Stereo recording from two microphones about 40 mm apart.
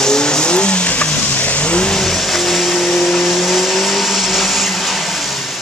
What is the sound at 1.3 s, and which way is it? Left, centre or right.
Vehicle, left.